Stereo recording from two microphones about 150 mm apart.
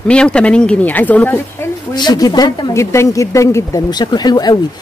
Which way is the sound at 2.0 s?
25° left (ahead or behind).